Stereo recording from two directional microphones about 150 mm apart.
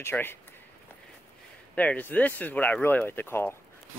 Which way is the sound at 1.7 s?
10° left (ahead or behind).